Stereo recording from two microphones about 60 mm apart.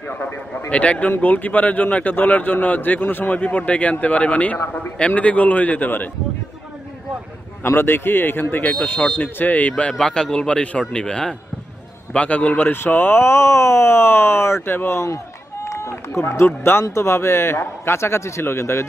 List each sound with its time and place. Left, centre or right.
0.7 s a man's voice: left
7.6 s a man's voice: left
9.9 s a man's voice: centre; by 18.9 s left